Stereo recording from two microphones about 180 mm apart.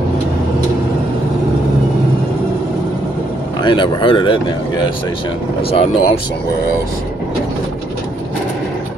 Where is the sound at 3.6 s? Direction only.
25° left (ahead or behind).